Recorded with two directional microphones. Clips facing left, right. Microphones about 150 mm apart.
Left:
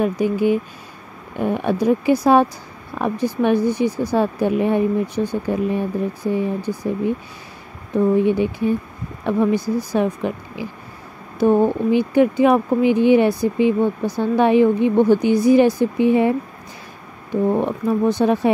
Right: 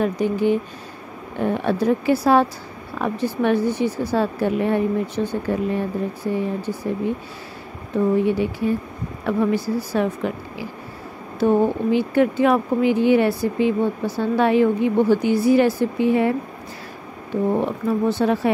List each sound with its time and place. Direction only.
0.0 s a woman's voice: 10° left (ahead or behind)
7.9 s a woman's voice: 20° left (ahead or behind)